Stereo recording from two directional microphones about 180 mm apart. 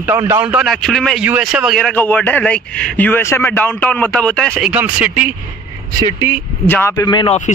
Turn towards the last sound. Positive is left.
turn(degrees=25)  # may be behind; listen again after turning